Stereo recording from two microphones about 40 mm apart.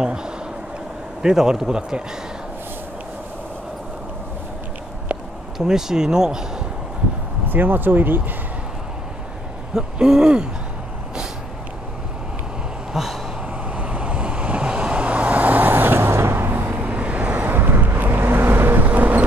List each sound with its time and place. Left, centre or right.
0.0 s a man's voice: right
5.6 s speech: centre
7.4 s speech: right
9.8 s a man's voice: centre
12.9 s gasp: centre
13.7 s vehicle: right
15.7 s vehicle: right
16.9 s vehicle: right
17.5 s vehicle: right
18.9 s a sound: right